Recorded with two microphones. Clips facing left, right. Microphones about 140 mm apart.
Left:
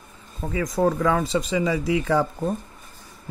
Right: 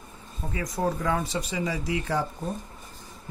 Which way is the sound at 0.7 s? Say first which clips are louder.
Left 6 dB; 90° left.